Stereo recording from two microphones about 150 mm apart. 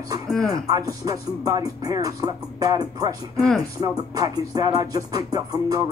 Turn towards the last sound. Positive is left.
turn(degrees=-25)  # may be behind; listen again after turning